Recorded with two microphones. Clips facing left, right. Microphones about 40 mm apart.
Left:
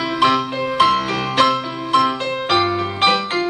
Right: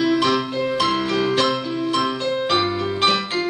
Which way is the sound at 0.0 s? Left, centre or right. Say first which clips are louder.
Left 2 dB; left.